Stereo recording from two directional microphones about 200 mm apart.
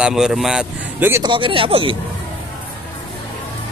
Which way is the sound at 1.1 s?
25° right (ahead or behind).